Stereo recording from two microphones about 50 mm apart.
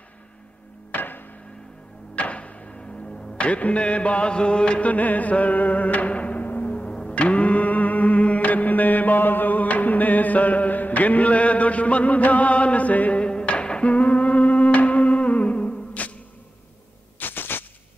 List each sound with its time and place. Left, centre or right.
0.9 s hammer: left
2.1 s music: left
13.2 s humming: centre
17.2 s a sound: left